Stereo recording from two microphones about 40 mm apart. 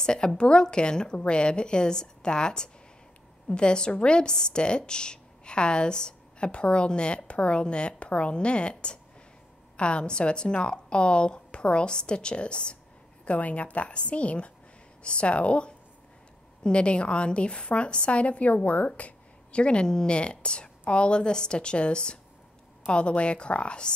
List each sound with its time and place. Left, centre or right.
0.0 s a woman's voice: centre
13.2 s a woman's voice: left